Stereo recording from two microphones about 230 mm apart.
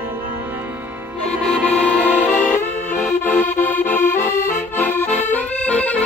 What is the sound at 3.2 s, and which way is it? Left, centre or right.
Music, centre.